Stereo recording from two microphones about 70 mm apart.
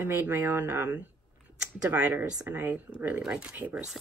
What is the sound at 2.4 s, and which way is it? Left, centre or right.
Speech, right.